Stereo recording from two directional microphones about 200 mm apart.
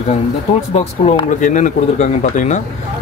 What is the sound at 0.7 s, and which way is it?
Speech, 25° left (ahead or behind).